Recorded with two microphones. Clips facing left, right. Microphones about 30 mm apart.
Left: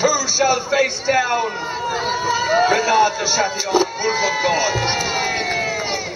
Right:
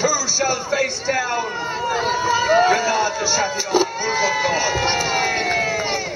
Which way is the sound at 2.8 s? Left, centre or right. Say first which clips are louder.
Left 4 dB; centre.